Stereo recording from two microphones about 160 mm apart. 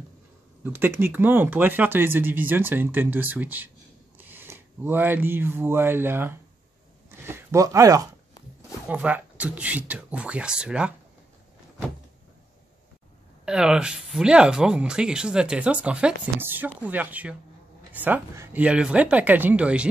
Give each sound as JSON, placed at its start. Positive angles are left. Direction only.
{"t": 0.7, "sound": "speech", "side_deg": -15}
{"t": 8.8, "sound": "speech", "side_deg": -10}
{"t": 13.5, "sound": "speech", "side_deg": -5}